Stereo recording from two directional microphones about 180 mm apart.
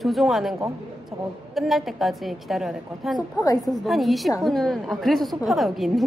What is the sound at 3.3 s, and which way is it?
Speech, 20° left (ahead or behind).